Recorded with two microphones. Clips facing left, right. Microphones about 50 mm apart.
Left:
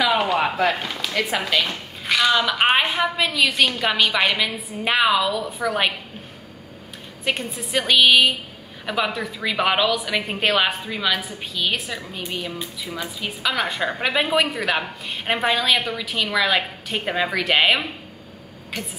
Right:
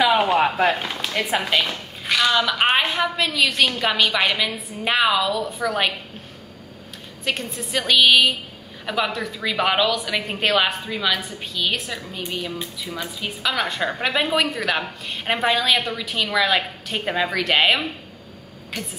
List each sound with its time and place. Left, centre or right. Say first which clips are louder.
0.2 s a sound: right 2 dB; centre
1.3 s speech: right 3 dB; centre
1.6 s speech: even; centre
7.2 s a woman's voice: left 1 dB; centre